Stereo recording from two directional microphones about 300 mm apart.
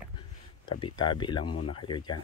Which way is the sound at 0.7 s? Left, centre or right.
Centre.